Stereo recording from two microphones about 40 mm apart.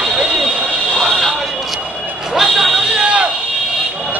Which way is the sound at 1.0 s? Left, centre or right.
Centre.